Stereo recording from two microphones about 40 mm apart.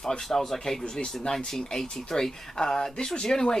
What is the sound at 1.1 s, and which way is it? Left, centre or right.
Speech, centre.